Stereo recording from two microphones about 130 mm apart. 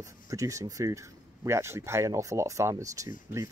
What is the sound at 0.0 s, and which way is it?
Speech, 25° right (ahead or behind).